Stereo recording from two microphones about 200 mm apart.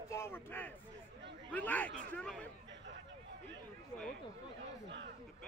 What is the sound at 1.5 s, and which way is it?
Speech, 10° left (ahead or behind).